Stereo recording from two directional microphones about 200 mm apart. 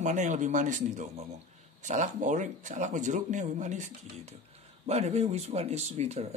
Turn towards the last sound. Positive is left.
turn(degrees=-35)  # may be behind; listen again after turning